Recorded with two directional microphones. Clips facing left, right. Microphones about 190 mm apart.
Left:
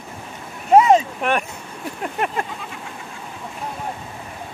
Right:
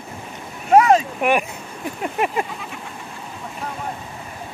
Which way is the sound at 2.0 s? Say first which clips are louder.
Right 2 dB; 5° right (ahead or behind).